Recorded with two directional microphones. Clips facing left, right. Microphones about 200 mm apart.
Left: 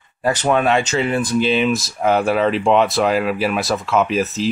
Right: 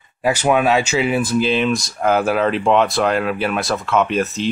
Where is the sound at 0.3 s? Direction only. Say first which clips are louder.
Right 1 dB; 10° right (ahead or behind).